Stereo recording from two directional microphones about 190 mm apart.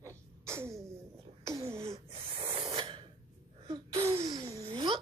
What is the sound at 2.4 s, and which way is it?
Snort, 30° right (ahead or behind).